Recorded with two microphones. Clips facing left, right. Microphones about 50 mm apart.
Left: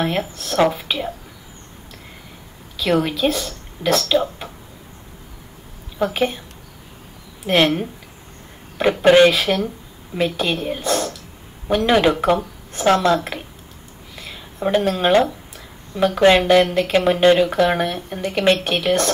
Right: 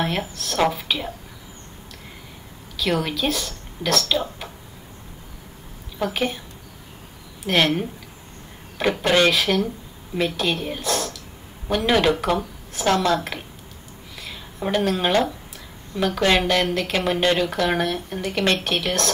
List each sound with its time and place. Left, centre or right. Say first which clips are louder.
0.0 s speech: left 3 dB; centre
2.8 s a woman's voice: left 5 dB; centre
5.9 s speech: left 4 dB; centre
7.4 s speech: left 3 dB; centre
9.0 s speech: left 7 dB; centre
9.3 s a woman's voice: left 1 dB; centre
14.1 s a sound: left 1 dB; centre
14.8 s speech: left 4 dB; centre
16.3 s speech: left 6 dB; centre